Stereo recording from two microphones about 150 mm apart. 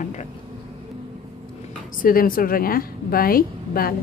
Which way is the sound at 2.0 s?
70° left (ahead or behind).